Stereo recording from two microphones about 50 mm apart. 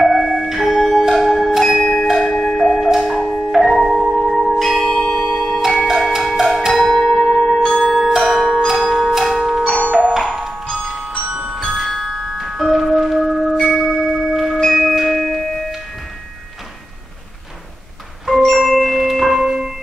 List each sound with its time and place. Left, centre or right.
0.0 s music: centre
1.8 s music: centre
5.2 s music: centre
7.8 s glockenspiel: centre
8.6 s music: centre
9.8 s music: right
10.5 s music: centre
10.8 s music: centre
11.2 s glockenspiel: centre
11.9 s marimba: centre
13.7 s music: centre
14.7 s tubular bells: centre
18.4 s mallet percussion: centre
19.4 s music: centre